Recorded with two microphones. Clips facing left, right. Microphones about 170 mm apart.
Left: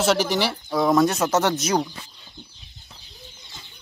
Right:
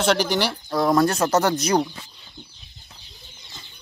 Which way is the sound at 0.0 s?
Centre (ahead or behind).